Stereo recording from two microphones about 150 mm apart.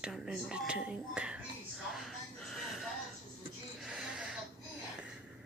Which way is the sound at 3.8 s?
5° right (ahead or behind).